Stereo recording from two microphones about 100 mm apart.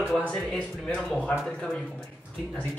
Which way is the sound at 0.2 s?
10° left (ahead or behind).